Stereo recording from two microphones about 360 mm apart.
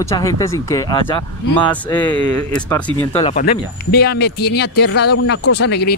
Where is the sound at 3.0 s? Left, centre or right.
Centre.